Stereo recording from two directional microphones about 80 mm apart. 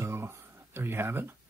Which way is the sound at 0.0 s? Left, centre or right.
Right.